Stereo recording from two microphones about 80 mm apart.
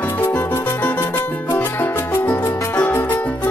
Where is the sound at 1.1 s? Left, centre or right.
Centre.